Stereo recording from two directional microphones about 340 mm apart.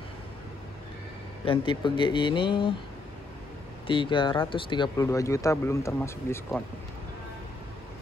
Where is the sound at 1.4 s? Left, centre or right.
Centre.